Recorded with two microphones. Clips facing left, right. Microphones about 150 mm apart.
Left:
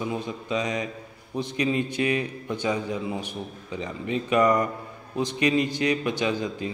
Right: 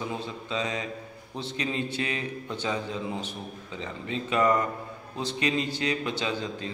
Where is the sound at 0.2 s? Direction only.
15° left (ahead or behind).